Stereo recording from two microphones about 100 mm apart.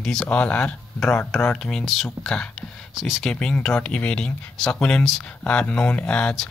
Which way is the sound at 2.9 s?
Centre (ahead or behind).